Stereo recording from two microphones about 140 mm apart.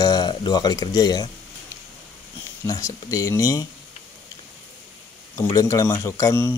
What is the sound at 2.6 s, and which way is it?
Speech, 25° left (ahead or behind).